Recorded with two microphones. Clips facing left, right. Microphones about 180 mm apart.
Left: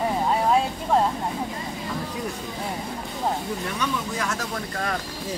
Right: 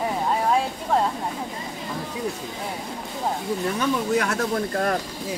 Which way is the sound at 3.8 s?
60° right (ahead or behind).